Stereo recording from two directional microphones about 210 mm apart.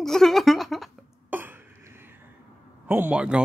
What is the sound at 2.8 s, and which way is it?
Speech, 10° right (ahead or behind).